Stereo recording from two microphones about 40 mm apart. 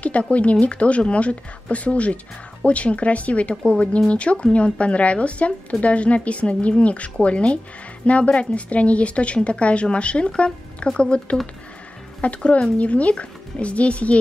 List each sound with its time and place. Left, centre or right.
0.0 s speech: left
12.4 s speech: left